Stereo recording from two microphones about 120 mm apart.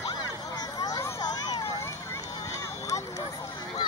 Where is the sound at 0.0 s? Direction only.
35° left (ahead or behind).